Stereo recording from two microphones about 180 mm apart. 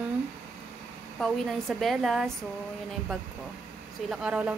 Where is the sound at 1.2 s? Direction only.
Centre (ahead or behind).